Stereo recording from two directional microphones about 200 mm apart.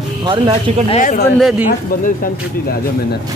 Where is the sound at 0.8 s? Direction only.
35° left (ahead or behind).